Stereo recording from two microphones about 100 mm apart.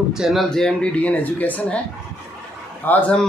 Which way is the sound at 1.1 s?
15° left (ahead or behind).